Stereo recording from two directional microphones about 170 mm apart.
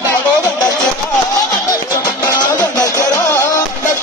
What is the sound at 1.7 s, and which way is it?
Music, 20° left (ahead or behind).